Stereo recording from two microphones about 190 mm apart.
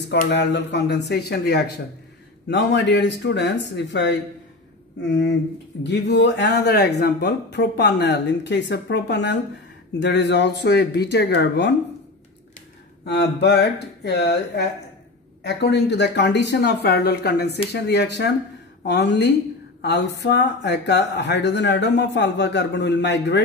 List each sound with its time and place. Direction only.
0.3 s speech: 65° left (ahead or behind)
2.4 s speech: 65° left (ahead or behind)
5.9 s speech: 65° left (ahead or behind)
13.0 s speech: 60° left (ahead or behind)